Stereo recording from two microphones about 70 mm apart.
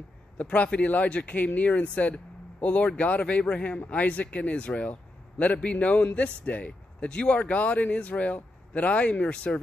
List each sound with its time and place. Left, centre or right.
0.4 s speech: centre